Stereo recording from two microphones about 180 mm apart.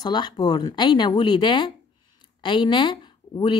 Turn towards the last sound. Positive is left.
turn(degrees=25)  # may be behind; listen again after turning